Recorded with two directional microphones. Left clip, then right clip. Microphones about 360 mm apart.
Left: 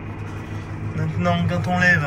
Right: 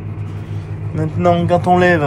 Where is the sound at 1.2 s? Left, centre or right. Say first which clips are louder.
Right 10 dB; centre.